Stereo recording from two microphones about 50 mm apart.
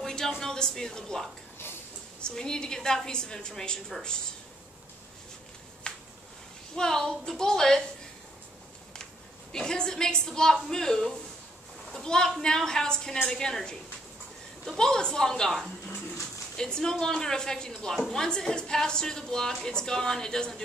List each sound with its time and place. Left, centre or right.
0.0 s a sound: centre
0.4 s a woman's voice: centre
5.9 s a sound: centre
6.7 s a woman's voice: centre
9.5 s a woman's voice: centre
14.8 s a woman's voice: centre